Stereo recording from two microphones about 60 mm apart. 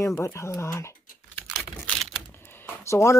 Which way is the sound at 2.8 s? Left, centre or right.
Left.